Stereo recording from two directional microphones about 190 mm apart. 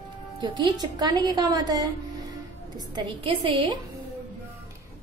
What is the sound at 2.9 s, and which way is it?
Speech, 25° right (ahead or behind).